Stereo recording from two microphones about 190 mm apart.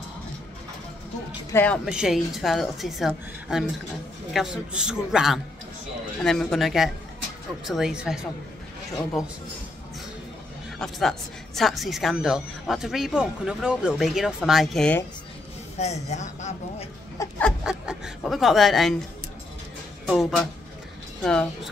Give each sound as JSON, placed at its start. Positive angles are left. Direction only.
{"t": 1.5, "sound": "a woman's voice", "side_deg": 10}
{"t": 1.9, "sound": "speech", "side_deg": -5}
{"t": 10.8, "sound": "speech", "side_deg": 0}
{"t": 15.8, "sound": "a woman's voice", "side_deg": 35}
{"t": 17.4, "sound": "speech", "side_deg": 0}
{"t": 20.1, "sound": "speech", "side_deg": 0}